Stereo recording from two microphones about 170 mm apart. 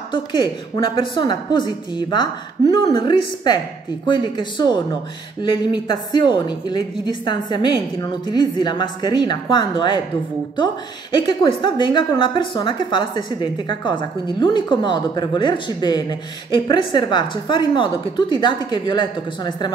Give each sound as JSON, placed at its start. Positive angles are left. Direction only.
{"t": 0.1, "sound": "a woman's voice", "side_deg": 30}